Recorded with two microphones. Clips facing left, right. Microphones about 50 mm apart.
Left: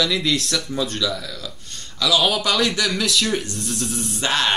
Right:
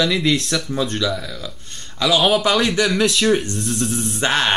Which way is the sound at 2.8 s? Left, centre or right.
Centre.